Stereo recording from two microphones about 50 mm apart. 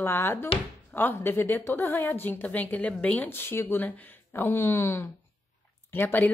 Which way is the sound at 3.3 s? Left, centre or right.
Left.